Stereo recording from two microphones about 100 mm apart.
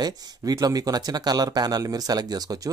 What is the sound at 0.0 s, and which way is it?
Speech, 40° right (ahead or behind).